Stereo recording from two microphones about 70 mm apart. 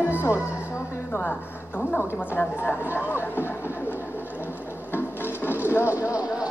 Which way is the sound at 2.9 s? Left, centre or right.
Left.